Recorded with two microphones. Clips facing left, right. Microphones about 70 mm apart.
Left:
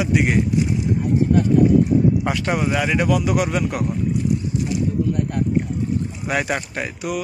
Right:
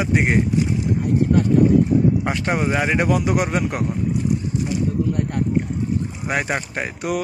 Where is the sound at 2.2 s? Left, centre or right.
Right.